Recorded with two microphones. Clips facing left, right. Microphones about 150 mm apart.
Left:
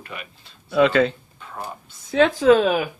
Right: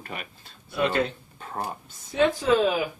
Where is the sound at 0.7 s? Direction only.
90° left.